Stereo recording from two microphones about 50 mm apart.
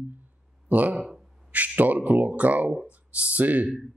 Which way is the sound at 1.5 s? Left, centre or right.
Right.